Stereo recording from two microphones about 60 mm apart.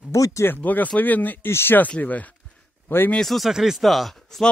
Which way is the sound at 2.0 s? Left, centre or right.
Left.